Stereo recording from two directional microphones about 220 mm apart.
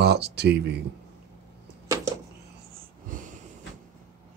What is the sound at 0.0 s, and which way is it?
Speech, 50° right (ahead or behind).